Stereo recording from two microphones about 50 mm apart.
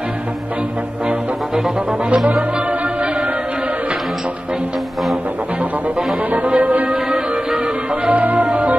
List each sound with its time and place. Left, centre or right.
1.5 s music: centre
2.0 s music: right
6.3 s music: right